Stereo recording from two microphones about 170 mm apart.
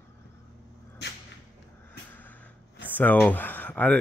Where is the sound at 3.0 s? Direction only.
10° left (ahead or behind).